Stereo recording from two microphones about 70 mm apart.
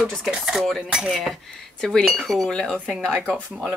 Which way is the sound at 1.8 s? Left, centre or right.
Centre.